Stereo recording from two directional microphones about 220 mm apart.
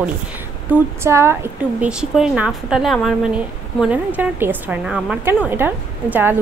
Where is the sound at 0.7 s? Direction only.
10° right (ahead or behind).